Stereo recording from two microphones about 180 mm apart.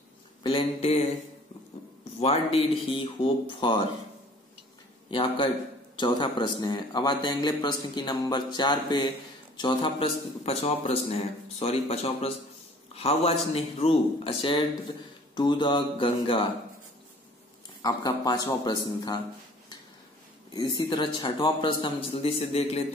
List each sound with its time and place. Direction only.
0.4 s a man's voice: 30° left (ahead or behind)
2.1 s a man's voice: 30° left (ahead or behind)
5.1 s a man's voice: 30° left (ahead or behind)
17.8 s a man's voice: 20° left (ahead or behind)
20.5 s a man's voice: 25° left (ahead or behind)